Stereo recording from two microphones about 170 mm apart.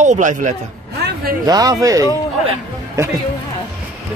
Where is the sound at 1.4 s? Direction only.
20° right (ahead or behind).